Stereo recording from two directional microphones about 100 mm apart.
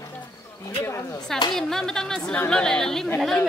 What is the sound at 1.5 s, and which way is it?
Speech, 5° left (ahead or behind).